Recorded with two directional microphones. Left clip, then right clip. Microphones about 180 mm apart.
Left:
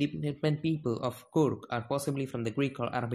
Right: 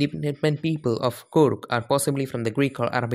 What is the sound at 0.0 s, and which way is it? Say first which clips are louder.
Speech: right 7 dB; 50° right (ahead or behind).